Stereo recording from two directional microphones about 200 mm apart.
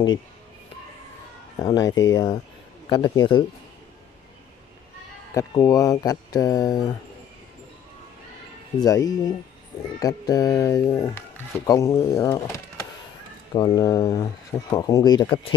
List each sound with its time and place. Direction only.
1.6 s speech: 20° left (ahead or behind)
5.3 s speech: 20° left (ahead or behind)
8.7 s speech: 15° left (ahead or behind)